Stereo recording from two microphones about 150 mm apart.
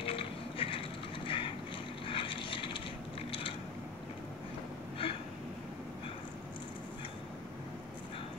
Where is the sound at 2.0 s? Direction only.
35° left (ahead or behind).